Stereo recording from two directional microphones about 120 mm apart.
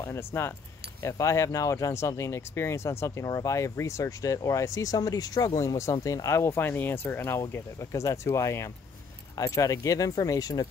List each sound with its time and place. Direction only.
0.0 s speech: 20° left (ahead or behind)